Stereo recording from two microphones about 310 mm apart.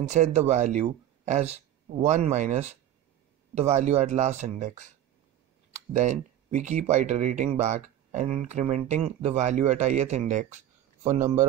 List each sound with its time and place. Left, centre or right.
0.1 s speech: right
5.9 s speech: right